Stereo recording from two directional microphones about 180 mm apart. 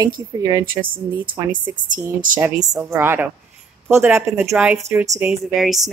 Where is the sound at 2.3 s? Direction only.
10° right (ahead or behind).